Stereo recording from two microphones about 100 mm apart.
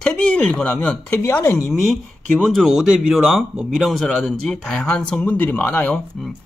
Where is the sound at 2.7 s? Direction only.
5° right (ahead or behind).